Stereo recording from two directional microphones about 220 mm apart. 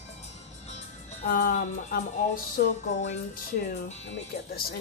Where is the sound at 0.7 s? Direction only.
35° left (ahead or behind).